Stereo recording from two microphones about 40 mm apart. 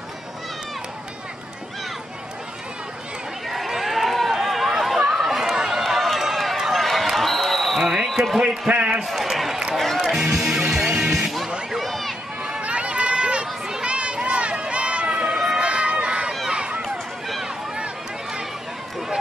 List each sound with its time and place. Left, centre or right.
3.4 s run: centre
6.8 s run: centre
7.1 s a sound: centre
8.6 s a man's voice: right
9.0 s speech: centre
9.8 s music: centre
10.0 s music: centre
11.7 s run: centre
12.4 s run: right
15.3 s run: centre
15.6 s run: right